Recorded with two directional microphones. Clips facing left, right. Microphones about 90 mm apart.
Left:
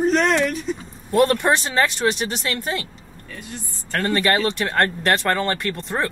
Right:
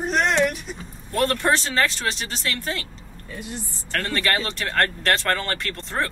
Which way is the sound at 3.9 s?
20° left (ahead or behind).